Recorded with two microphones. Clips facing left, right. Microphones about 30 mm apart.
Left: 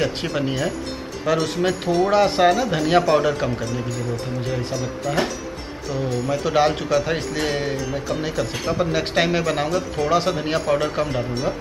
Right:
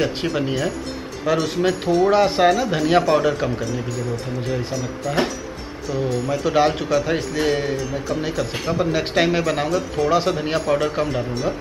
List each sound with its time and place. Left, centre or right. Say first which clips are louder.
0.0 s speech: right 1 dB; centre